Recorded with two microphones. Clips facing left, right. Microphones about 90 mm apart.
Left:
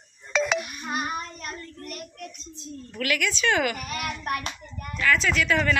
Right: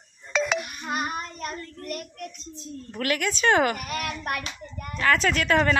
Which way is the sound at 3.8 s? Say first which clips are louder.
Even; 60° right (ahead or behind).